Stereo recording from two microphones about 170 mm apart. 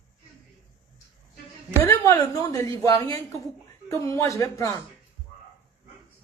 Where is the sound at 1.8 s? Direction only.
20° left (ahead or behind).